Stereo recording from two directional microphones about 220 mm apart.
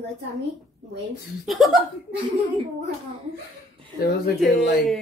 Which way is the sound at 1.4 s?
Centre (ahead or behind).